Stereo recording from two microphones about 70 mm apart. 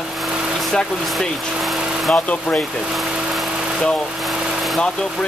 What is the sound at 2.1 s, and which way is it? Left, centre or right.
Speech, centre.